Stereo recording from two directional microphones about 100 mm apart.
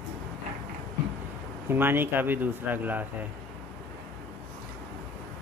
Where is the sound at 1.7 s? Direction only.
20° right (ahead or behind).